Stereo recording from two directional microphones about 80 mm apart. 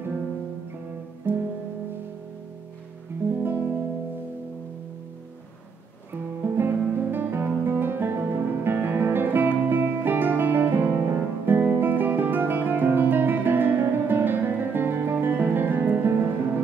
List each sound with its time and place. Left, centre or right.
1.3 s music: right
3.4 s music: right
6.4 s guitar: right
11.1 s music: right